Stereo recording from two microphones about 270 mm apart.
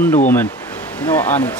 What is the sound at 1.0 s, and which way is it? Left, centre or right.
Speech, centre.